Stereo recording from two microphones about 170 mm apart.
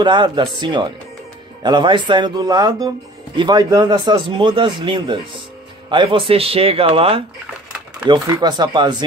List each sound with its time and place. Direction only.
0.0 s speech: 30° right (ahead or behind)